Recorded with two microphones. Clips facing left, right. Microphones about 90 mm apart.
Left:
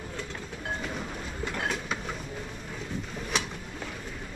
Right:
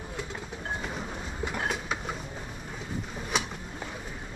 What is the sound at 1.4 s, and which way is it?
Train, 10° right (ahead or behind).